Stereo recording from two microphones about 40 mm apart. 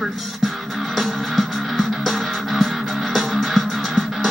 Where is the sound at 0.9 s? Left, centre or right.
Centre.